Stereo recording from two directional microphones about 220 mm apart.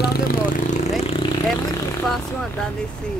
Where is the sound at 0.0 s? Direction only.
45° left (ahead or behind); by 1.8 s 25° left (ahead or behind).